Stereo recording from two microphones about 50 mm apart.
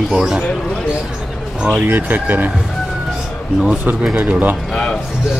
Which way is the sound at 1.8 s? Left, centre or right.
Right.